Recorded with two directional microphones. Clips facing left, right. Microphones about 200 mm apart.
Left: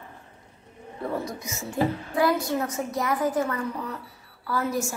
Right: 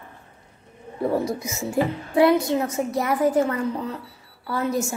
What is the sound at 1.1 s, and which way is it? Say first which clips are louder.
A woman's voice: right 5 dB; 25° right (ahead or behind).